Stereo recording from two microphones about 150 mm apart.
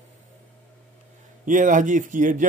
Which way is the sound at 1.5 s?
60° right (ahead or behind).